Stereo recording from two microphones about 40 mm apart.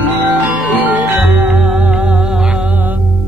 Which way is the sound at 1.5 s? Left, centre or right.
Centre.